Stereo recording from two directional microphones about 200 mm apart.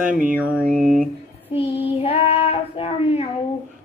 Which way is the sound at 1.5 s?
30° left (ahead or behind).